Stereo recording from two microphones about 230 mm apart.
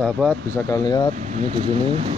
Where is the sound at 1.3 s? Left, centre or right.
Right.